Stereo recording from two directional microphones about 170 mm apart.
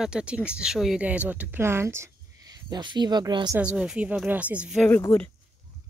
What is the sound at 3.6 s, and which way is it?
Speech, 5° right (ahead or behind).